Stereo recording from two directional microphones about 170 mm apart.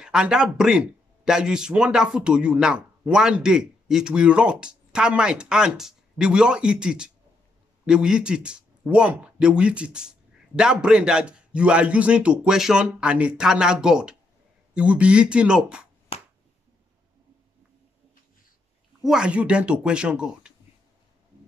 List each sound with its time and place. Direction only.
0.0 s speech: 5° right (ahead or behind)
16.1 s finger snapping: 35° left (ahead or behind)
18.9 s speech: 5° right (ahead or behind)